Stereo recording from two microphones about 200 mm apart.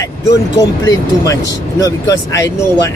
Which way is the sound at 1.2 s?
15° left (ahead or behind).